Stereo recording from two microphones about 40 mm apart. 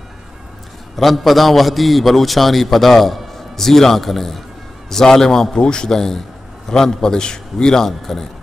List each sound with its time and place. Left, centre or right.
0.9 s a man's voice: centre
5.6 s a man's voice: left